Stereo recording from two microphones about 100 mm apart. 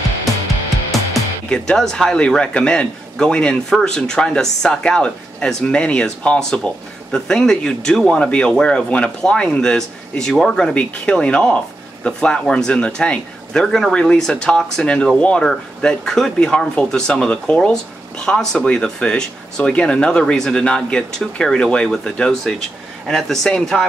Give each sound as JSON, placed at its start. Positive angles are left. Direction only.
{"t": 1.5, "sound": "speech", "side_deg": 5}